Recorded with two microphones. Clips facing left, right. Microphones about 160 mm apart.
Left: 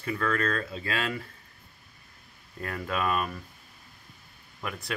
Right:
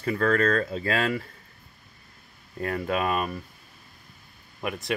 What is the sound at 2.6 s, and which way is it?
Speech, 30° right (ahead or behind).